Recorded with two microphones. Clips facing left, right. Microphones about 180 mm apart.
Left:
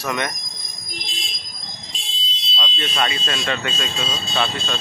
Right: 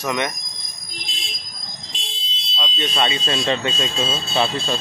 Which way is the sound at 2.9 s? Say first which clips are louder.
Right 2 dB; 25° right (ahead or behind).